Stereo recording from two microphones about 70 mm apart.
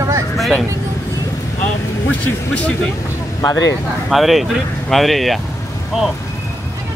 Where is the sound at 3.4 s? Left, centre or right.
Left.